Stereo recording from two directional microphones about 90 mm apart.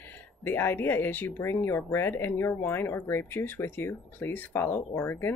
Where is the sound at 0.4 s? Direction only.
25° left (ahead or behind).